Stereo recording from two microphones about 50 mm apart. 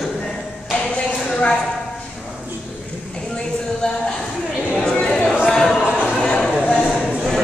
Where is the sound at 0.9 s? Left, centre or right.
Left.